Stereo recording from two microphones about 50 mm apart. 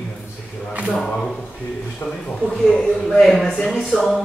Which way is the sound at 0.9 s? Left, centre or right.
Centre.